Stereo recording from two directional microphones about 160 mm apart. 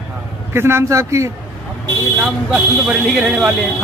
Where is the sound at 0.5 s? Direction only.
15° right (ahead or behind).